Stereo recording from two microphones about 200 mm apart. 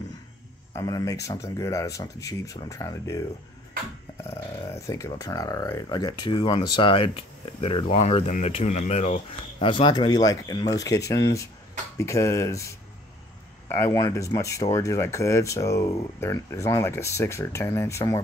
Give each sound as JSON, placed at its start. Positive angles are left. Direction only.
{"t": 0.7, "sound": "speech", "side_deg": 20}
{"t": 9.6, "sound": "speech", "side_deg": 25}
{"t": 13.7, "sound": "speech", "side_deg": 15}